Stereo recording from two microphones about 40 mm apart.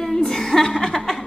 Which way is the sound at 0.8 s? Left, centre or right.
Centre.